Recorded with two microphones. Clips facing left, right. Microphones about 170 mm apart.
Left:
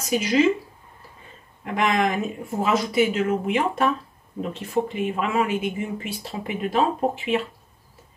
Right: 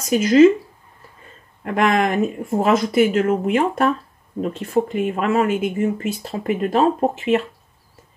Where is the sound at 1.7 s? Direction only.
50° right (ahead or behind).